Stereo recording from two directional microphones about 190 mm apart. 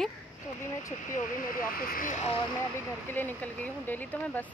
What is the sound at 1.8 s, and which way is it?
Speech, 50° left (ahead or behind).